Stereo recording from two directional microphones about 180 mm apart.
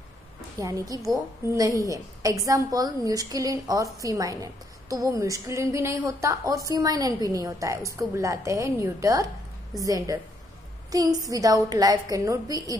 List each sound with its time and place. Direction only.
0.6 s a woman's voice: 20° right (ahead or behind)